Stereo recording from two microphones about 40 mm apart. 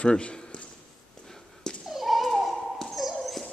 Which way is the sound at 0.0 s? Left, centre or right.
Left.